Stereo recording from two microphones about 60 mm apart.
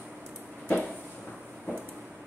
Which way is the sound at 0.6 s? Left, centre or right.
Centre.